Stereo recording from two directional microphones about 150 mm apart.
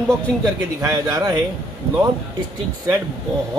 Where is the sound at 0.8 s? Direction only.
25° right (ahead or behind).